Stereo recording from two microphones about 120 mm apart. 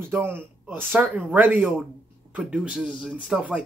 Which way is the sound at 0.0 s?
20° right (ahead or behind).